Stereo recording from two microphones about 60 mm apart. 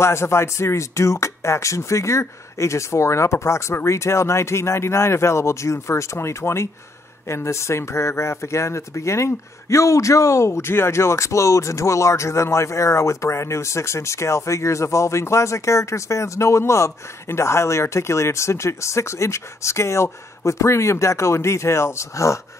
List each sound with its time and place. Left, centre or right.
0.0 s speech: left